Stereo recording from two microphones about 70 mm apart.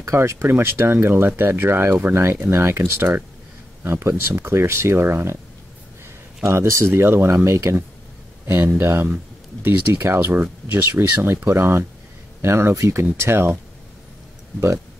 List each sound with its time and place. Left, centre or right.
0.0 s speech: right
6.4 s speech: right
11.4 s speech: right